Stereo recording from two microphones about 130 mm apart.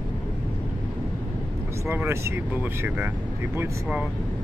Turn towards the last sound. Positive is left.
turn(degrees=-15)  # may be behind; listen again after turning